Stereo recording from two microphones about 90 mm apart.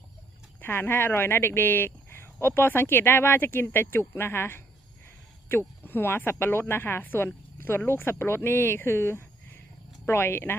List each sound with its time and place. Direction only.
0.6 s speech: 25° left (ahead or behind)